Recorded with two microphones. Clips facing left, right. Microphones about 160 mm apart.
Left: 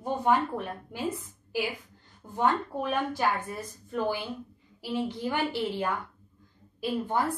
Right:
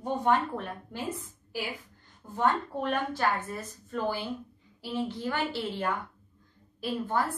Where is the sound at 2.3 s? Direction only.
10° left (ahead or behind).